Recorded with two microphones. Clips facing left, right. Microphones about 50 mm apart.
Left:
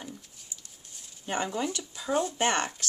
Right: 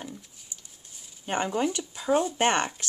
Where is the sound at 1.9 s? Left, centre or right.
Centre.